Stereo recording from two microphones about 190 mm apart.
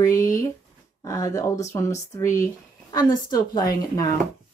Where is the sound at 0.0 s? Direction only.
15° left (ahead or behind).